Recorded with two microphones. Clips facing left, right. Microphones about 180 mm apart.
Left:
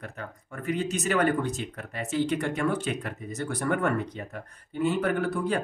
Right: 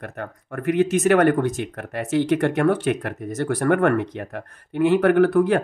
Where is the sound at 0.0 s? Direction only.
55° right (ahead or behind).